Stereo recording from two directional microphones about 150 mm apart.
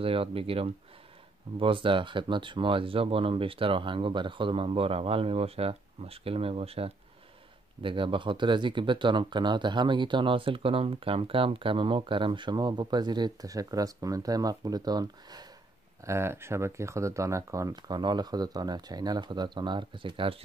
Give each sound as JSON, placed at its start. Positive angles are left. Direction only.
{"t": 0.0, "sound": "speech", "side_deg": -40}
{"t": 16.1, "sound": "speech", "side_deg": -15}